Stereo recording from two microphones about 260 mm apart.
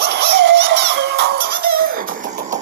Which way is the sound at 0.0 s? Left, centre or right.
Right.